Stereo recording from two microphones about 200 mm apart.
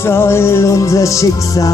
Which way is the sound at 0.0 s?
10° left (ahead or behind).